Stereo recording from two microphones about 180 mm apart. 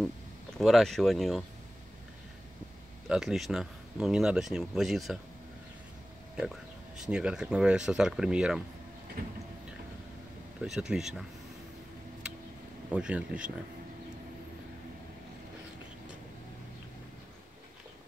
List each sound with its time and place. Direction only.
0.6 s speech: centre (ahead or behind)
3.1 s speech: centre (ahead or behind)
6.3 s speech: 5° right (ahead or behind)
9.2 s a sound: 55° right (ahead or behind)
10.6 s speech: 5° right (ahead or behind)
12.9 s speech: 5° right (ahead or behind)